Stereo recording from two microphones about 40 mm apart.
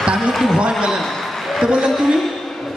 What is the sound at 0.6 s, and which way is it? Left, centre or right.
A man's voice, centre.